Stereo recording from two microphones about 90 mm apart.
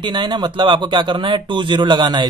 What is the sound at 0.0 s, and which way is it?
Speech, 60° right (ahead or behind).